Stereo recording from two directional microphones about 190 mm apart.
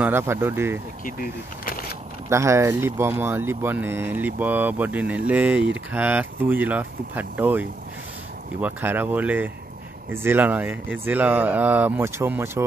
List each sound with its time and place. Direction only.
0.0 s speech: 10° right (ahead or behind)
1.7 s a sound: 50° left (ahead or behind)
2.2 s speech: 15° right (ahead or behind)